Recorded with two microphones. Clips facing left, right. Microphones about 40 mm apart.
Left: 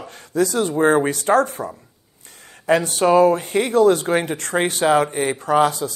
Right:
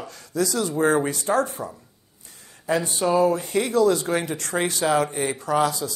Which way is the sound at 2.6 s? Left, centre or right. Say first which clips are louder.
Left 6 dB; left.